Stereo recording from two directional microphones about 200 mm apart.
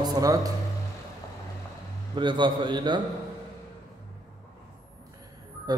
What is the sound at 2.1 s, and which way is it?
Speech, 25° right (ahead or behind).